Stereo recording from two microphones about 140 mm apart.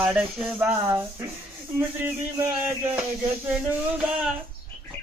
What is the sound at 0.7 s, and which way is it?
Speech, 30° right (ahead or behind).